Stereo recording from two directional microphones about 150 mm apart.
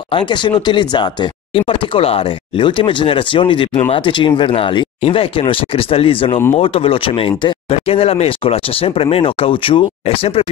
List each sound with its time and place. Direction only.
0.1 s speech: 30° left (ahead or behind)